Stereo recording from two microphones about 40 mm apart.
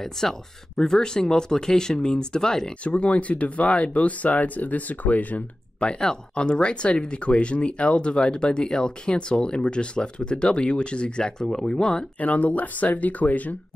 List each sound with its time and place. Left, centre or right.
0.0 s speech: centre
2.8 s speech: left
5.8 s speech: left
12.2 s speech: left